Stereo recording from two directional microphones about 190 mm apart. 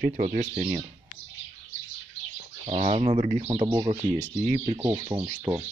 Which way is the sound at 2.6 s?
35° right (ahead or behind).